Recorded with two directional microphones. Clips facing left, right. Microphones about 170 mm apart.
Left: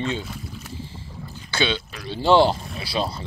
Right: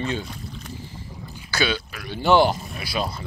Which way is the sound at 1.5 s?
25° left (ahead or behind).